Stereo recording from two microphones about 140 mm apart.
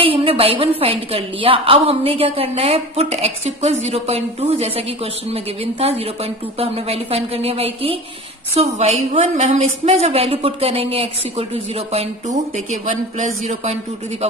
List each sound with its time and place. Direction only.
0.0 s a woman's voice: 40° right (ahead or behind)